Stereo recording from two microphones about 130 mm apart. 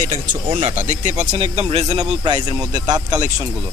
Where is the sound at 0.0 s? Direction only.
65° right (ahead or behind).